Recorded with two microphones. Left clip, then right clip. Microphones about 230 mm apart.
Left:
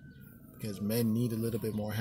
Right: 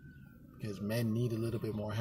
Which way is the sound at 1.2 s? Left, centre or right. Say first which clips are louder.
Left 3 dB; centre.